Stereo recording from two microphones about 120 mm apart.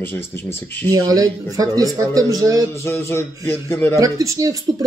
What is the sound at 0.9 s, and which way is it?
A man's voice, 30° right (ahead or behind).